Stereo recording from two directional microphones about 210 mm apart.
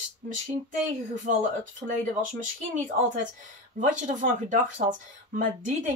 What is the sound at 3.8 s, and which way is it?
Speech, 35° right (ahead or behind).